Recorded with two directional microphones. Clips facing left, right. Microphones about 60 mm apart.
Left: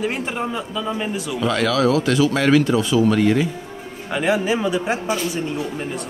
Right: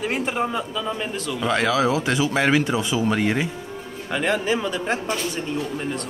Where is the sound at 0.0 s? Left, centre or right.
Centre.